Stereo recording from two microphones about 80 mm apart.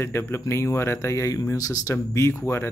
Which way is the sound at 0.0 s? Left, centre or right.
Left.